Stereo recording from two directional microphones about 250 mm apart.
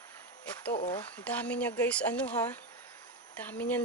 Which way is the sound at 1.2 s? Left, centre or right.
Centre.